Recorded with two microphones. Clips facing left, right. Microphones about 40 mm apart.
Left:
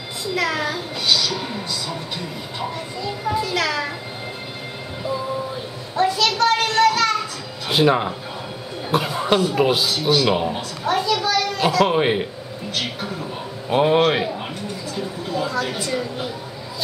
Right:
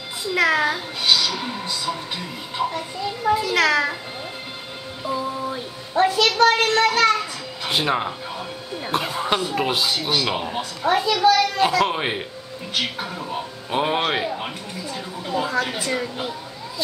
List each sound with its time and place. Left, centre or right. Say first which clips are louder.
0.2 s a child's voice: right 4 dB; centre
3.3 s a child's voice: right 4 dB; centre
5.9 s a child's voice: right 2 dB; right
7.6 s speech: left 4 dB; centre
11.0 s a sound: left 1 dB; centre
11.2 s a child's voice: right 3 dB; centre